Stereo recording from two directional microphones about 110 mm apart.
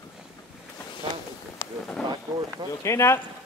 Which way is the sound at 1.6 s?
25° left (ahead or behind).